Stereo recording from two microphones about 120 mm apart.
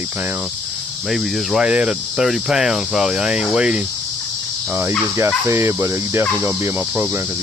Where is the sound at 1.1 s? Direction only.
Centre (ahead or behind).